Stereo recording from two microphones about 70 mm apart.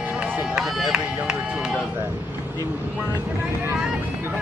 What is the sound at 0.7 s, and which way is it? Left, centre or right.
Run, centre.